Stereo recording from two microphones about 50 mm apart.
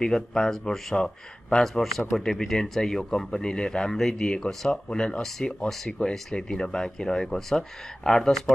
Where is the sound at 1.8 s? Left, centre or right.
Centre.